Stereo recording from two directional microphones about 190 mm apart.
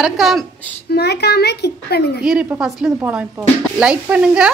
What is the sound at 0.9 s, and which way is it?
A child's voice, 60° left (ahead or behind).